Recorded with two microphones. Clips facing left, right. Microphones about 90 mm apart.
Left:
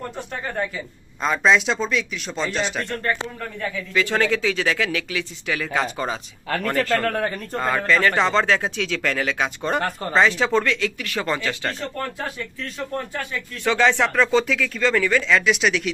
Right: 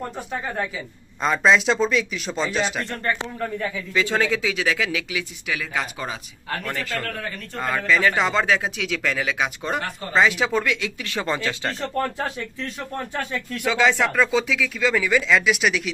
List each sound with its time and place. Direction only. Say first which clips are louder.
0.3 s speech: left 1 dB; 5° right (ahead or behind)
7.1 s speech: left 8 dB; 55° left (ahead or behind)
7.7 s speech: even; 5° right (ahead or behind); by 11.7 s 20° right (ahead or behind)
12.9 s speech: right 1 dB; 25° right (ahead or behind)
13.7 s speech: left 1 dB; 5° right (ahead or behind)